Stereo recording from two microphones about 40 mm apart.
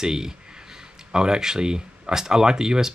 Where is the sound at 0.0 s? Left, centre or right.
Centre.